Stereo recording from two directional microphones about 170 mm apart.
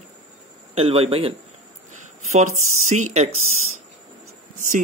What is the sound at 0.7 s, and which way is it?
Speech, 35° right (ahead or behind).